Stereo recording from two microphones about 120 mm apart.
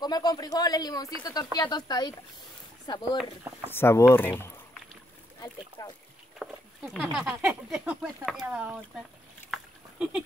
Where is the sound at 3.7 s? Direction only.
20° left (ahead or behind).